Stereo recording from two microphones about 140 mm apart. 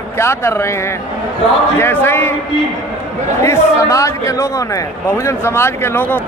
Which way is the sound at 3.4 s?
20° left (ahead or behind).